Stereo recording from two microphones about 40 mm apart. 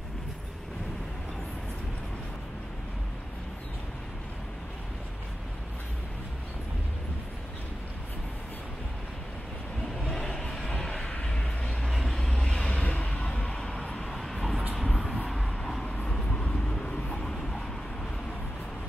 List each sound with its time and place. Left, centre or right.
10.0 s vehicle: centre
10.4 s a sound: left
10.8 s vehicle: centre
11.9 s vehicle: centre
12.3 s vehicle: centre
12.8 s a sound: left
13.8 s vehicle: left
14.1 s vehicle: centre
15.8 s vehicle: left